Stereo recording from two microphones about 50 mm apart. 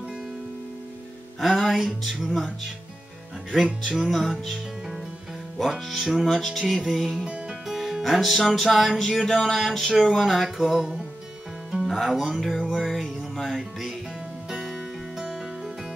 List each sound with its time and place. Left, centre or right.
1.6 s music: centre
3.8 s music: centre
5.7 s music: centre
7.2 s music: right
7.6 s music: centre
11.8 s speech: centre
12.6 s music: centre
15.1 s music: centre